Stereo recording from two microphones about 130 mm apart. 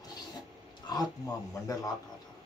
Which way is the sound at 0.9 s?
30° left (ahead or behind).